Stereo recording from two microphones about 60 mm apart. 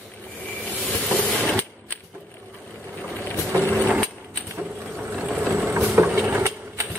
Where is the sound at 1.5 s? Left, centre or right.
Left.